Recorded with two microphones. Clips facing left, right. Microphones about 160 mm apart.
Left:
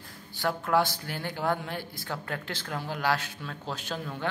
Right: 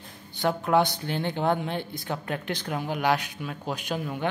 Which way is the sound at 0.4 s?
20° right (ahead or behind).